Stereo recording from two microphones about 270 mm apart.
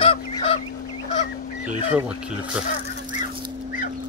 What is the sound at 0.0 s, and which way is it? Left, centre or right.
Fowl, left.